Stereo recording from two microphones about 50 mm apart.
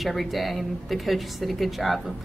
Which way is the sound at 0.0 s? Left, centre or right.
Centre.